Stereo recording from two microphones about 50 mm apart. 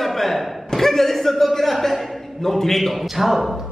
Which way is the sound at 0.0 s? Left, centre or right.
Centre.